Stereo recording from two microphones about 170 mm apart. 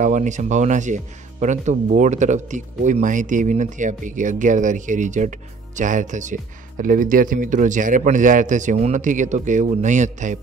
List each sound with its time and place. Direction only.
0.0 s speech: 45° right (ahead or behind)